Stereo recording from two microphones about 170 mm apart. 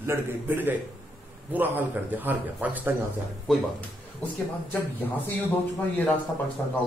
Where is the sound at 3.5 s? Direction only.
10° left (ahead or behind).